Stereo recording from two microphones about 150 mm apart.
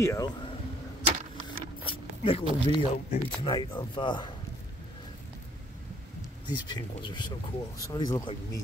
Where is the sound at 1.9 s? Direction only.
35° left (ahead or behind).